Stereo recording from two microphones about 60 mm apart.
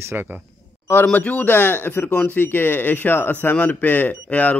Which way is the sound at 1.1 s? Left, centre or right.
Left.